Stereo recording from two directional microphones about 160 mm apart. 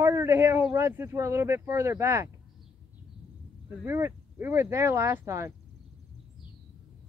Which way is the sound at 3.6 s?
15° right (ahead or behind).